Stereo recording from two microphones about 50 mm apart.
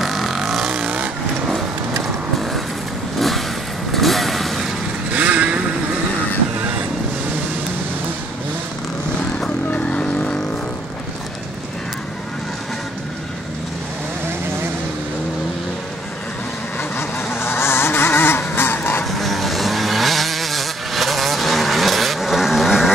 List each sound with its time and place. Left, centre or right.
0.0 s vehicle: centre
3.2 s vehicle: centre
5.1 s vehicle: right
9.7 s vehicle: left
17.3 s goose: left
18.4 s vehicle: left
19.0 s vehicle: centre